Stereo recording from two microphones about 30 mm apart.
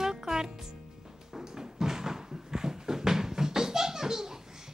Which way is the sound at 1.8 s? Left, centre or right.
Centre.